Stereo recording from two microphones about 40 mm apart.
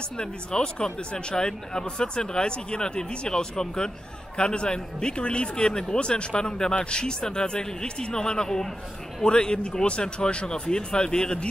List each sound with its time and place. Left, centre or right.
0.2 s a man's voice: left